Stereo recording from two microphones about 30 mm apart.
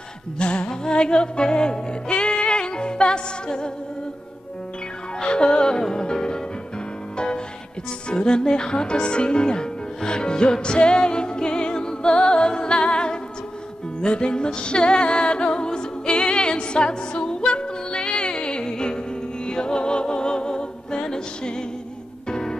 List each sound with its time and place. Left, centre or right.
0.4 s music: left
5.2 s music: left
7.2 s music: left
8.1 s speech: left
14.0 s music: left